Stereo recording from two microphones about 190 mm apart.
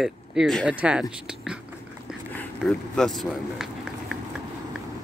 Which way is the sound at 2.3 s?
5° left (ahead or behind).